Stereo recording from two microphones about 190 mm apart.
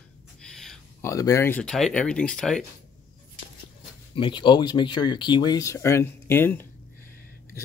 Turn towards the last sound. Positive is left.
turn(degrees=10)  # may be behind; listen again after turning